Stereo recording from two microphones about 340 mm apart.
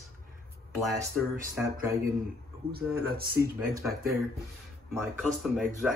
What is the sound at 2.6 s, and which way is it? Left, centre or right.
Speech, right.